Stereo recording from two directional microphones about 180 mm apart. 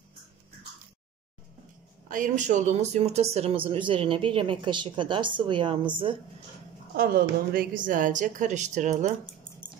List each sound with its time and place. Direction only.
2.0 s speech: 45° right (ahead or behind); by 5.8 s 25° right (ahead or behind)
7.0 s a woman's voice: 55° right (ahead or behind)